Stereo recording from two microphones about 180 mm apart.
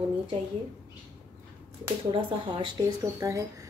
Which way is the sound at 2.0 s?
25° right (ahead or behind).